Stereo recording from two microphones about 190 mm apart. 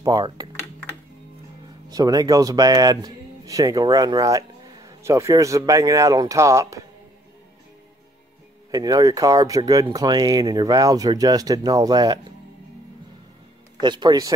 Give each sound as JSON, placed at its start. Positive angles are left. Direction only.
{"t": 0.0, "sound": "speech", "side_deg": -20}
{"t": 1.9, "sound": "speech", "side_deg": -20}
{"t": 8.7, "sound": "speech", "side_deg": -20}
{"t": 13.7, "sound": "speech", "side_deg": -25}